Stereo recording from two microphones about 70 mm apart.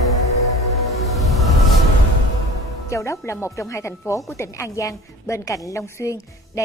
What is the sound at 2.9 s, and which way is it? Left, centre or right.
Music, left.